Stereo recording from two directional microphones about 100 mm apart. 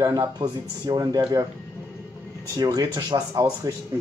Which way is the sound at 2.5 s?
40° right (ahead or behind).